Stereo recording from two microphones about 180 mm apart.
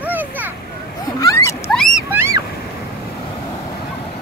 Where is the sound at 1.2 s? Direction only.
15° left (ahead or behind).